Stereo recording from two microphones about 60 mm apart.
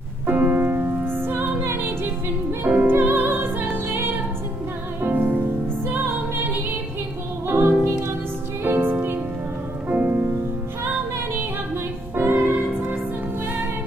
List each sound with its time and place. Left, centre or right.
0.3 s music: right
2.6 s music: right
7.4 s music: right
12.2 s music: right